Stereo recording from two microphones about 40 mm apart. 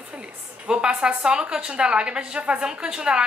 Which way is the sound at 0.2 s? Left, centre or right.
Right.